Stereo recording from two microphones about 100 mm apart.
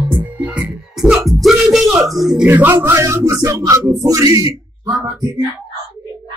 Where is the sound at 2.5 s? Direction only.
20° right (ahead or behind).